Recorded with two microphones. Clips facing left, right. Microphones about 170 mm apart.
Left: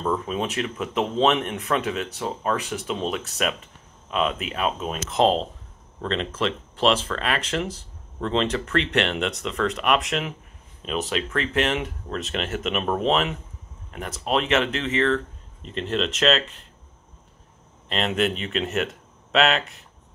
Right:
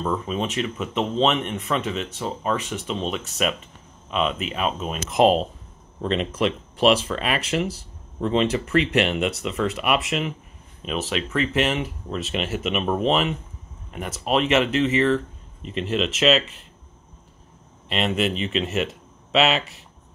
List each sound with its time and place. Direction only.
0.0 s speech: centre (ahead or behind)
5.1 s speech: 10° right (ahead or behind)
17.8 s speech: 5° right (ahead or behind)